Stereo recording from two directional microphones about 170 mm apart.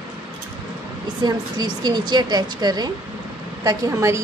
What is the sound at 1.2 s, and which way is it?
A woman's voice, 25° right (ahead or behind).